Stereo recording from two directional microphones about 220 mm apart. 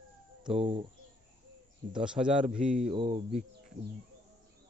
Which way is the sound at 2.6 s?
30° right (ahead or behind).